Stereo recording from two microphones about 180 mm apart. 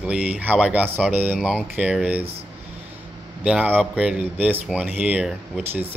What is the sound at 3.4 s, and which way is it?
Speech, 10° right (ahead or behind).